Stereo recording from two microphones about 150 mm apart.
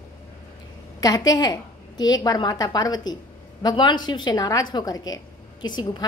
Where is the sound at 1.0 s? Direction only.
25° left (ahead or behind).